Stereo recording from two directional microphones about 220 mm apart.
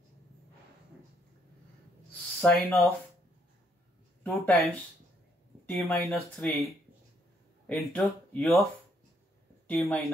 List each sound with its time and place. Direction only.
2.4 s speech: centre (ahead or behind)
4.2 s speech: 5° left (ahead or behind)
5.7 s speech: centre (ahead or behind)
9.7 s speech: centre (ahead or behind)